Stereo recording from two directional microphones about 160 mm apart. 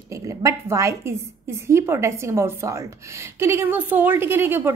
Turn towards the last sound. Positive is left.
turn(degrees=-15)  # may be behind; listen again after turning